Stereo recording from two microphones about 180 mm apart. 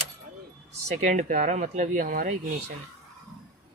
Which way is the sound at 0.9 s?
45° right (ahead or behind).